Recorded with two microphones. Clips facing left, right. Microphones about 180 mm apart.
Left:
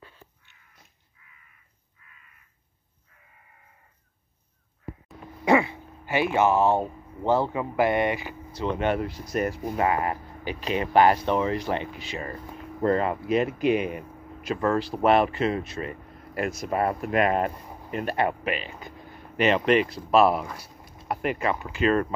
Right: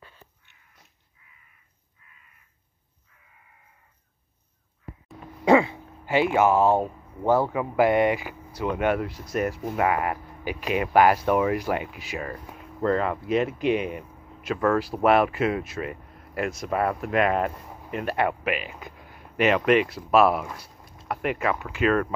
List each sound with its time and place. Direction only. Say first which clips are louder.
5.5 s speech: right 3 dB; 15° left (ahead or behind)
6.0 s speech: right 2 dB; 20° right (ahead or behind); by 9.8 s centre (ahead or behind)
9.8 s speech: right 1 dB; 30° left (ahead or behind)
10.4 s speech: right 1 dB; 10° right (ahead or behind)
12.9 s speech: even; 5° left (ahead or behind)
18.1 s speech: right 1 dB; 35° left (ahead or behind)
18.5 s speech: right 1 dB; 5° right (ahead or behind)